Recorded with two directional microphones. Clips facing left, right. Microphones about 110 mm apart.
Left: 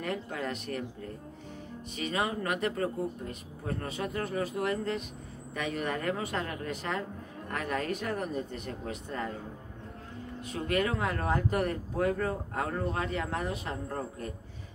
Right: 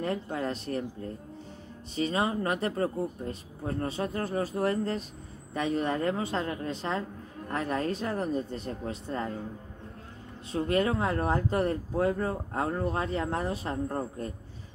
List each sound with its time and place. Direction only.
0.0 s a woman's voice: 30° right (ahead or behind)
10.5 s a woman's voice: 30° right (ahead or behind)